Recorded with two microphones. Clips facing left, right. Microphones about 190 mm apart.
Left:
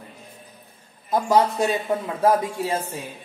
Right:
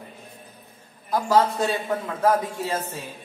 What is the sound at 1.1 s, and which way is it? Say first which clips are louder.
A man's voice: left 1 dB; 15° left (ahead or behind).